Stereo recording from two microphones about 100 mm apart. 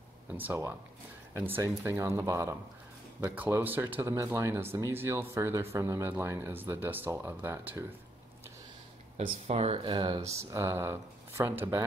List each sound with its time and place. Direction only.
0.3 s speech: 20° right (ahead or behind)
4.0 s speech: 30° right (ahead or behind)
9.5 s speech: 90° right
9.8 s speech: 50° right (ahead or behind)
10.2 s speech: 30° right (ahead or behind)